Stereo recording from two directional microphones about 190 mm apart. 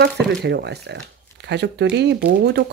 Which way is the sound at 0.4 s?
65° right (ahead or behind).